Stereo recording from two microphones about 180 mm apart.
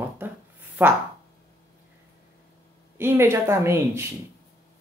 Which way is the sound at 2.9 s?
15° right (ahead or behind).